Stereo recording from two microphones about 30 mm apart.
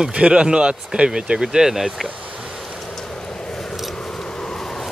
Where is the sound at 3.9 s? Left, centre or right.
Left.